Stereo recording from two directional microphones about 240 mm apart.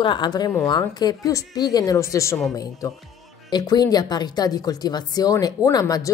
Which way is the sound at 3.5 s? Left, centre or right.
Centre.